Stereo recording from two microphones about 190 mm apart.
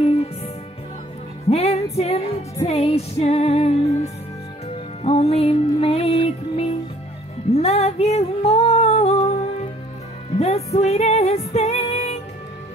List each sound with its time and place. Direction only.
0.0 s music: 30° left (ahead or behind)
1.5 s music: 35° left (ahead or behind)
5.0 s music: 30° left (ahead or behind)
7.5 s female singing: 35° left (ahead or behind)
10.3 s music: 35° left (ahead or behind)